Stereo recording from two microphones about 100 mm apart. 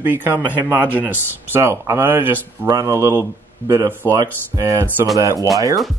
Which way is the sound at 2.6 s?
35° right (ahead or behind).